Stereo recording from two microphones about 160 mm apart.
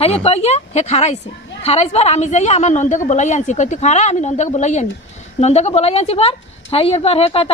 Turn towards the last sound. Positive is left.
turn(degrees=35)  # may be behind; listen again after turning